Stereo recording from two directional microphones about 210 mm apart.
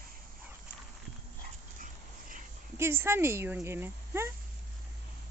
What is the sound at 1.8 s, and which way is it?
Dog, 40° right (ahead or behind).